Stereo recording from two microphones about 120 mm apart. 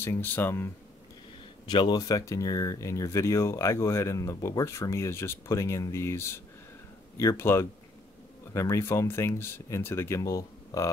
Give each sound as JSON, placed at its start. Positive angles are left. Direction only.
{"t": 0.0, "sound": "speech", "side_deg": 20}
{"t": 1.7, "sound": "speech", "side_deg": 40}